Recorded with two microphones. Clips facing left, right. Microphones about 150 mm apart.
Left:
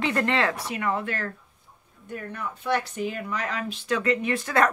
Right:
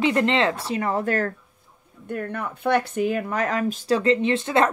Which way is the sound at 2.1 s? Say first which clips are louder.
Right 5 dB; 60° right (ahead or behind).